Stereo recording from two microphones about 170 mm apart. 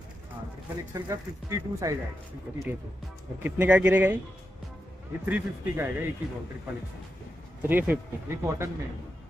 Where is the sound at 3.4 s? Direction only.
10° right (ahead or behind).